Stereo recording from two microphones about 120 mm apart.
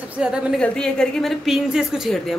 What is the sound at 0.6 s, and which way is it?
A woman's voice, 5° left (ahead or behind).